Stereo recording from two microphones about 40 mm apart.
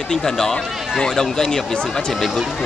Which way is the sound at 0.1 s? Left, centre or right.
Centre.